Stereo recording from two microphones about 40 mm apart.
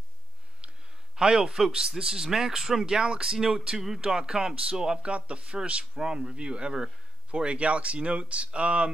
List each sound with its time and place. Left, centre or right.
1.1 s speech: centre
5.0 s speech: right
5.9 s speech: centre